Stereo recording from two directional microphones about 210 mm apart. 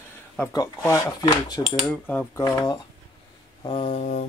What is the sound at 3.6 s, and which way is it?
Mantra, 25° left (ahead or behind).